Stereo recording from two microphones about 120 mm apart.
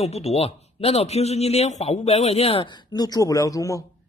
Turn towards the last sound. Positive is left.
turn(degrees=25)  # may be behind; listen again after turning